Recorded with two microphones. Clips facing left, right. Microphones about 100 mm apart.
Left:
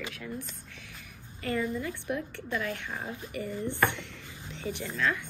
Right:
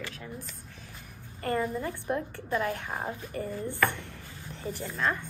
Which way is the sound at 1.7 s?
50° right (ahead or behind).